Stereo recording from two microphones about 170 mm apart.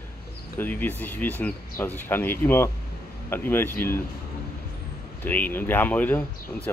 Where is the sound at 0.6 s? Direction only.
10° left (ahead or behind).